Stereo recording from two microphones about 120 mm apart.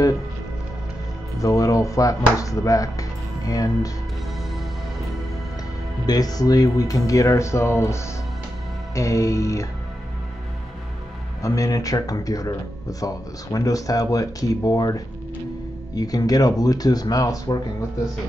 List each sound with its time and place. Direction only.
1.4 s speech: 25° left (ahead or behind)
6.0 s speech: 30° left (ahead or behind)
11.4 s speech: 25° left (ahead or behind)